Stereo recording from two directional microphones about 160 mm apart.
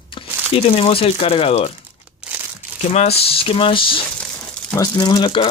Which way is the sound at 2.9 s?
40° left (ahead or behind).